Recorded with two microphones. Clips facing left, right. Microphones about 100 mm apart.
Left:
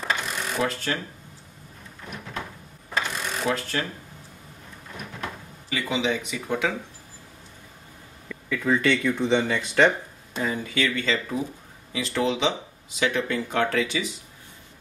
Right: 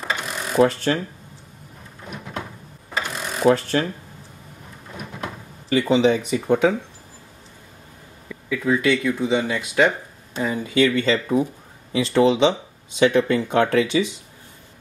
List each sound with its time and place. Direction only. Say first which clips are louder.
0.6 s speech: right 10 dB; 35° right (ahead or behind)
3.0 s mechanisms: right 2 dB; 5° right (ahead or behind)
3.4 s speech: right 10 dB; 30° right (ahead or behind)
5.7 s speech: right 9 dB; 35° right (ahead or behind)
8.3 s speech: right 2 dB; 5° right (ahead or behind)
10.5 s speech: right 10 dB; 20° right (ahead or behind)